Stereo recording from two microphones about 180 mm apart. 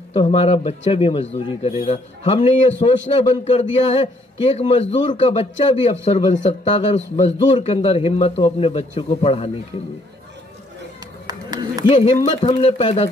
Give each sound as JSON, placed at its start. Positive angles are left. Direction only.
{"t": 0.1, "sound": "a man's voice", "side_deg": 30}
{"t": 11.2, "sound": "a sound", "side_deg": -20}
{"t": 11.9, "sound": "a man's voice", "side_deg": 35}